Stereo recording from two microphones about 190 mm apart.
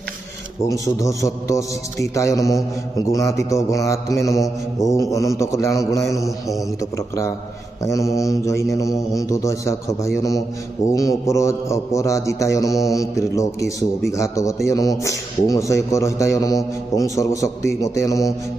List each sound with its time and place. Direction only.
1.0 s a man's voice: 15° left (ahead or behind)